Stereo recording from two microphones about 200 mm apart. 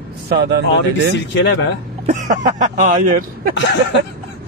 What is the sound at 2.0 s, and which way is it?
Speech, 40° right (ahead or behind).